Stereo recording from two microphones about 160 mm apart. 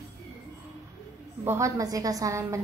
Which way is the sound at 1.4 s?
20° right (ahead or behind).